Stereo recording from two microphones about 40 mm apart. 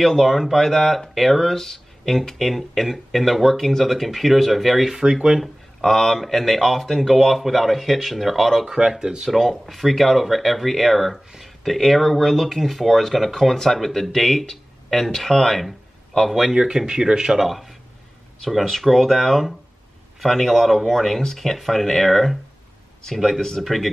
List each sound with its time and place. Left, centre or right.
0.0 s speech: centre
4.9 s speech: centre
5.4 s speech: centre
16.5 s speech: centre
17.4 s speech: centre